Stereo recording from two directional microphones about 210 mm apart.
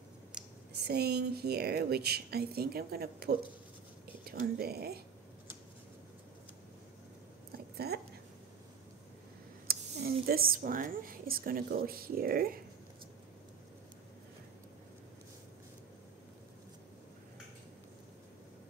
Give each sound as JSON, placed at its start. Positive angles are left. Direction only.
{"t": 0.7, "sound": "a woman's voice", "side_deg": -50}
{"t": 7.5, "sound": "a sound", "side_deg": -50}
{"t": 9.7, "sound": "a woman's voice", "side_deg": -45}